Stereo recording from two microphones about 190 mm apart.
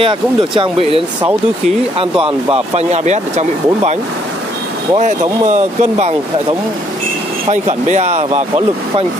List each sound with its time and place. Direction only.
0.0 s speech: 25° right (ahead or behind)
5.5 s speech: 35° right (ahead or behind)
7.4 s speech: 35° right (ahead or behind)